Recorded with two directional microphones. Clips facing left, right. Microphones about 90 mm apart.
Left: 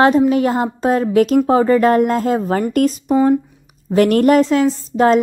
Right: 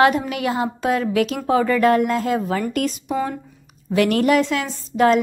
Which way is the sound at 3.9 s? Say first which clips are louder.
Left 5 dB; 40° left (ahead or behind).